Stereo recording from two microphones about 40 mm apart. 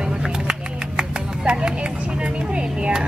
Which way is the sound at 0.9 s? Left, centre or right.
Right.